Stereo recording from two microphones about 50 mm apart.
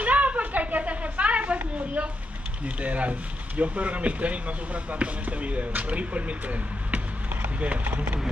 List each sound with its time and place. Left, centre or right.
0.0 s a sound: right
2.6 s speech: right
7.6 s speech: right